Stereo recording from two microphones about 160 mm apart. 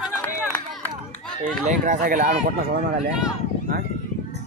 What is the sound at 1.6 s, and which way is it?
Speech, 50° right (ahead or behind).